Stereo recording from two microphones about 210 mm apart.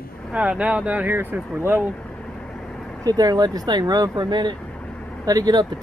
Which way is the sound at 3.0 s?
20° right (ahead or behind).